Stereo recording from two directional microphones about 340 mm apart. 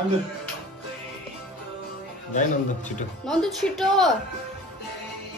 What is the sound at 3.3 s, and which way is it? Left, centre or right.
Speech, centre.